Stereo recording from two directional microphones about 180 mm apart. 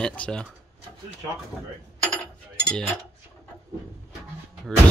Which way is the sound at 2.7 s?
5° left (ahead or behind).